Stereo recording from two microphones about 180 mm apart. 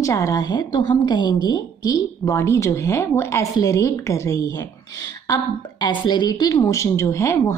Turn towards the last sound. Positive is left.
turn(degrees=15)  # may be behind; listen again after turning